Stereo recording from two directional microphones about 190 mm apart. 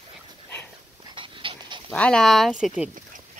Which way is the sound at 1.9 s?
5° left (ahead or behind).